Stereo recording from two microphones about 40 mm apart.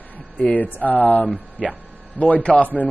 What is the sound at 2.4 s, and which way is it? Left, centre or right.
Speech, left.